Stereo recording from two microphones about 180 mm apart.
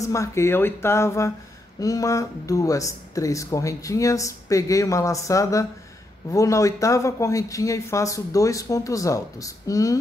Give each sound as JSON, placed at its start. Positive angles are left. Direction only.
{"t": 0.0, "sound": "speech", "side_deg": 15}